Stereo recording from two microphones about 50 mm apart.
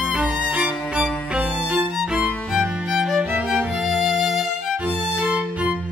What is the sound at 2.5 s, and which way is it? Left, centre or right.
Music, centre.